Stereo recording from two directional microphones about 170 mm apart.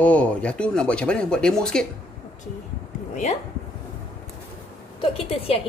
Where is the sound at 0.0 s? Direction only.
10° left (ahead or behind).